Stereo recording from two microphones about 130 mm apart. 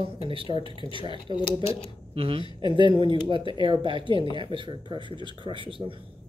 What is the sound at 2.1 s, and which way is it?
Speech, 45° right (ahead or behind).